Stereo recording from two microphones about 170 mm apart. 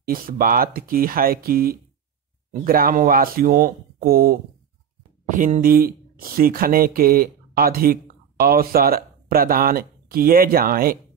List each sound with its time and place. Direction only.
0.0 s speech: 60° right (ahead or behind)